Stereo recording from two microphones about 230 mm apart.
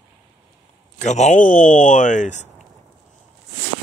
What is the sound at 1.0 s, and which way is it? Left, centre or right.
Speech, left.